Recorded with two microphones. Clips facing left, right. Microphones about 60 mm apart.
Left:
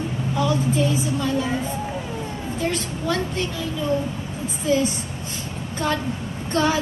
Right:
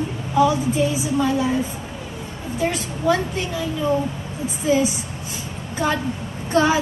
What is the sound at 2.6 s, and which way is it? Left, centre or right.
Speech, centre.